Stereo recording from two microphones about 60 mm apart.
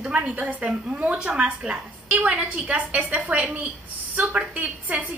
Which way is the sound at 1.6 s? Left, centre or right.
Centre.